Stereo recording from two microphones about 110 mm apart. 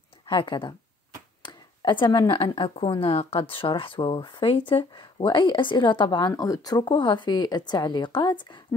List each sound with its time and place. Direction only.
0.3 s speech: 45° left (ahead or behind)
1.8 s speech: 45° left (ahead or behind)